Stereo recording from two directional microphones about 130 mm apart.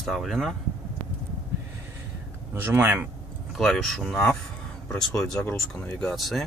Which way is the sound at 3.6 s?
Centre (ahead or behind).